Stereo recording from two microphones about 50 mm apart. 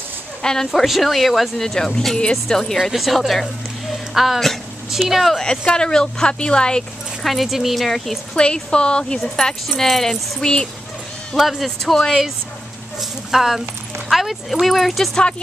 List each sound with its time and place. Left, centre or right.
0.4 s speech: centre
0.7 s speech: centre
2.8 s speech: centre
4.1 s a sound: centre
5.7 s speech: centre
7.2 s speech: centre
8.4 s speech: centre
11.3 s speech: centre
13.3 s speech: centre